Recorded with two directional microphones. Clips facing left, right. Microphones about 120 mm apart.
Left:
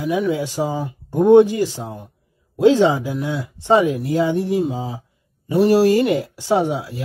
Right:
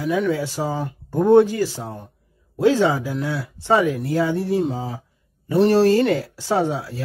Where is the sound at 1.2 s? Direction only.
20° left (ahead or behind).